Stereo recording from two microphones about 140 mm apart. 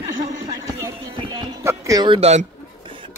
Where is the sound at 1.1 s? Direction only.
35° right (ahead or behind).